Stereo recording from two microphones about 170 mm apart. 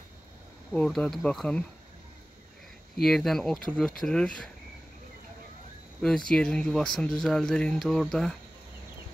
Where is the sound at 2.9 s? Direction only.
Centre (ahead or behind).